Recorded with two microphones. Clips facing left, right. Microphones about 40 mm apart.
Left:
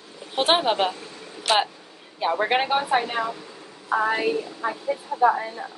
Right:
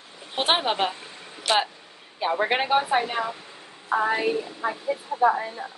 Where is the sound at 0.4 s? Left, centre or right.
Centre.